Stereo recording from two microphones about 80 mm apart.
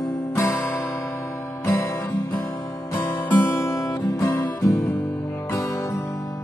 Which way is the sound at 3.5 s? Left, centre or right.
Left.